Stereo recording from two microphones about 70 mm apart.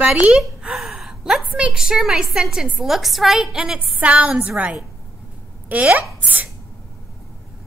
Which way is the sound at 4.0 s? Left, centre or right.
Centre.